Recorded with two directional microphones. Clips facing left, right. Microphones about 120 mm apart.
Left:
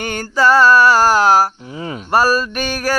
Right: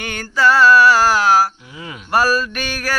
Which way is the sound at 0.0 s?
40° left (ahead or behind).